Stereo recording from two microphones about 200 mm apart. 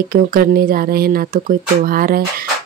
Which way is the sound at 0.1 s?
45° right (ahead or behind).